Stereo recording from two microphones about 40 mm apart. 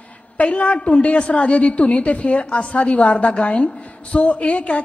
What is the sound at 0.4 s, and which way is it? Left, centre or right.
A woman's voice, left.